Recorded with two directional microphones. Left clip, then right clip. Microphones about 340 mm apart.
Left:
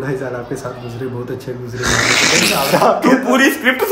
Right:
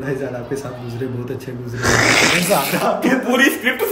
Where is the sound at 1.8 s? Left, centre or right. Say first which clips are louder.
Even; centre.